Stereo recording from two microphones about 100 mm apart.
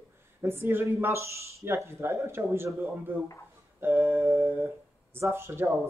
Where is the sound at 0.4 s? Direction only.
25° right (ahead or behind).